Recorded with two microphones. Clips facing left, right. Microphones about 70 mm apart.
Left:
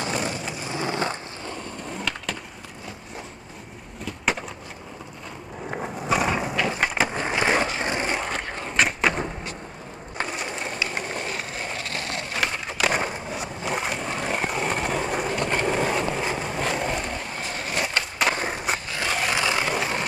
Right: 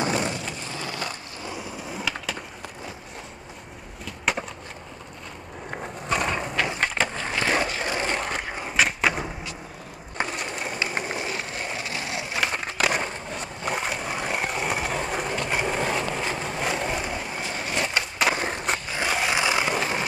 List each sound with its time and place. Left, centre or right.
0.1 s vehicle: centre
0.7 s skateboard: left
1.5 s skateboard: centre
5.7 s a sound: centre
6.7 s skateboard: centre
7.2 s skateboard: centre
7.8 s a sound: centre
8.2 s skateboard: centre
10.2 s ratchet: centre
11.1 s skateboard: centre
18.9 s a sound: centre
19.7 s vehicle: centre